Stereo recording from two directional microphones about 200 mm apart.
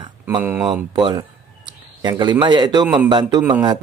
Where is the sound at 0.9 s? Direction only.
20° right (ahead or behind).